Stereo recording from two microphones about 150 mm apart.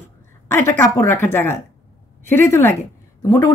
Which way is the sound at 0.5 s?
15° left (ahead or behind).